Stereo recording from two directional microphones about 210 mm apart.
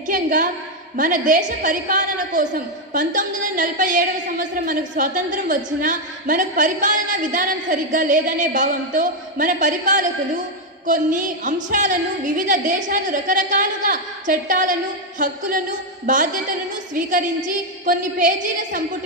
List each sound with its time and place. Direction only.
0.0 s a woman's voice: 40° right (ahead or behind)